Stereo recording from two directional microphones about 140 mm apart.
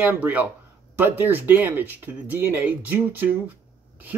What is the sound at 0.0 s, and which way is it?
Speech, 10° right (ahead or behind).